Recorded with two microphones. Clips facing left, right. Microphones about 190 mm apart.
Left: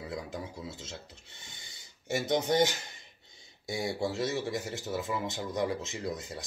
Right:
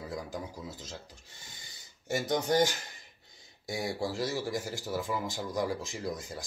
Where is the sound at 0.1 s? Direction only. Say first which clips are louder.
Even; 25° left (ahead or behind).